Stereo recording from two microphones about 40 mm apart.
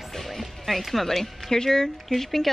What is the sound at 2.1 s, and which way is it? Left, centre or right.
Speech, centre.